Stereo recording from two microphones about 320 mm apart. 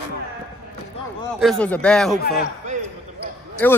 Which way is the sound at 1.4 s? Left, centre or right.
Centre.